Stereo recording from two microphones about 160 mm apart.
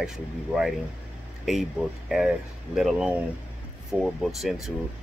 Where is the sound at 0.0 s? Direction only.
5° right (ahead or behind).